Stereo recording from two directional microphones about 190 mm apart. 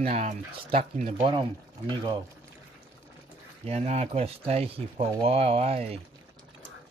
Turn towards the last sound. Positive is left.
turn(degrees=-35)  # may be behind; listen again after turning